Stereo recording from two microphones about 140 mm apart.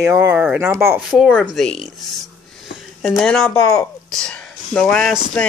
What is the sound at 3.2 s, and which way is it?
Speech, 10° left (ahead or behind).